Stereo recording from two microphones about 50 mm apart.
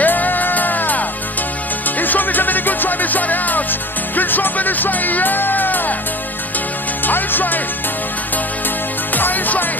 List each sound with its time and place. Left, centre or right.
0.0 s music: left
7.1 s music: left
9.1 s music: left